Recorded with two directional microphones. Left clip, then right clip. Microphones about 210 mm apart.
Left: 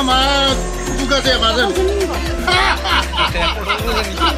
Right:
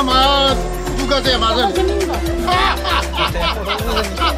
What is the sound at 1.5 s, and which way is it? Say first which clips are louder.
Speech: even; 5° left (ahead or behind).